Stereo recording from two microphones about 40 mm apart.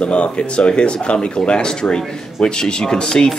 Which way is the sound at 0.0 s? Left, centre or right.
Left.